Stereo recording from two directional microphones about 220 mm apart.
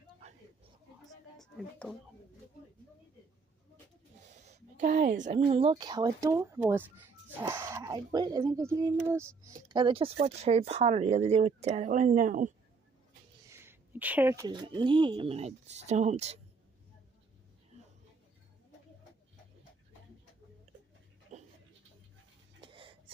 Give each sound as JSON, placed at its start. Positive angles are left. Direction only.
{"t": 1.4, "sound": "speech", "side_deg": 0}
{"t": 4.3, "sound": "speech", "side_deg": -30}
{"t": 13.5, "sound": "speech", "side_deg": -10}
{"t": 21.3, "sound": "a sound", "side_deg": -30}
{"t": 22.6, "sound": "wheeze", "side_deg": -25}